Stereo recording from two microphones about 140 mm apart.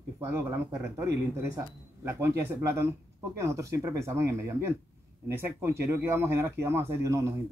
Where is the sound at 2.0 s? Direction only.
20° right (ahead or behind).